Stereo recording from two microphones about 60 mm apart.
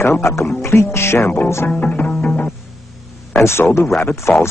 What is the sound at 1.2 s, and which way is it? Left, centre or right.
Speech, left.